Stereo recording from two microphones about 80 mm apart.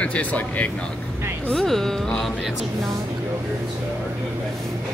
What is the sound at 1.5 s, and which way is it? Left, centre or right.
Speech, centre.